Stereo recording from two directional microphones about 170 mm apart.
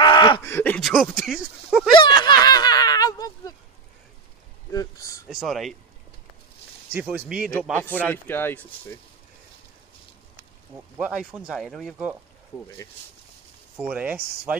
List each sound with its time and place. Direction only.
0.0 s a sound: 30° left (ahead or behind)
0.4 s speech: 15° left (ahead or behind); by 1.9 s centre (ahead or behind)
2.0 s snicker: 25° left (ahead or behind)
4.7 s speech: 20° left (ahead or behind)
5.3 s speech: centre (ahead or behind)
6.9 s speech: 10° right (ahead or behind)
7.7 s a man's voice: 10° left (ahead or behind)
11.0 s speech: 5° right (ahead or behind)
13.7 s speech: 10° right (ahead or behind)